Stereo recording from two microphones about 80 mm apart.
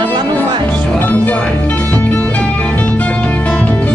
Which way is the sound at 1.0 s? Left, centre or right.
Left.